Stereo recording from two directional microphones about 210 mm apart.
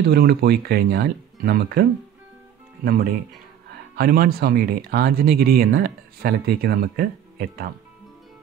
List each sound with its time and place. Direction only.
0.0 s speech: 50° right (ahead or behind)